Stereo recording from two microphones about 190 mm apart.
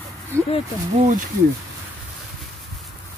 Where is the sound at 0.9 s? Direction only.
40° right (ahead or behind).